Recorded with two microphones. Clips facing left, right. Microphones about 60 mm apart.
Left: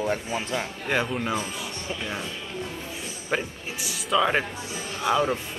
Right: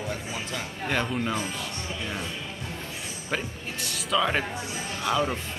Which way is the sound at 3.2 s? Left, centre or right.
Centre.